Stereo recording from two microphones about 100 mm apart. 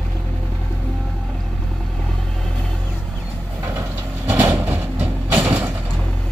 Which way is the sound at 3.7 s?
20° right (ahead or behind).